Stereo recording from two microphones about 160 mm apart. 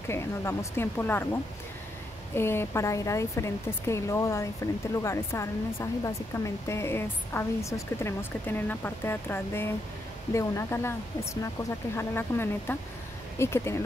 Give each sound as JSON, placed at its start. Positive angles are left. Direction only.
{"t": 0.1, "sound": "a woman's voice", "side_deg": 15}
{"t": 2.3, "sound": "a woman's voice", "side_deg": 15}